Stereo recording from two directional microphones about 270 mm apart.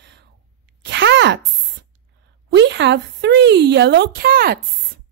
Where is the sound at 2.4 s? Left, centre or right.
Right.